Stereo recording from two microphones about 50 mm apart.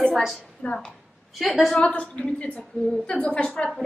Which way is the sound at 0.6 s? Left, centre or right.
Left.